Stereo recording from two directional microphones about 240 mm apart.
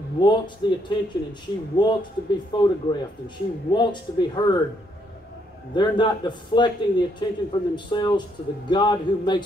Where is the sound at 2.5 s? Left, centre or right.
Centre.